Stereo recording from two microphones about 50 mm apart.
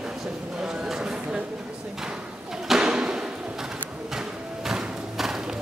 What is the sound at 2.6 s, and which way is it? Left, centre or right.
Thump, centre.